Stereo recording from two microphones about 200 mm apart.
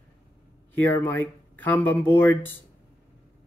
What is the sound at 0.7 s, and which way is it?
Speech, 10° left (ahead or behind).